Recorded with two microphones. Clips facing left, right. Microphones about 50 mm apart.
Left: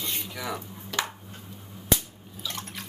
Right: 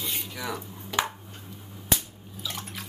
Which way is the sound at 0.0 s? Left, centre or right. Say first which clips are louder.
Even; centre.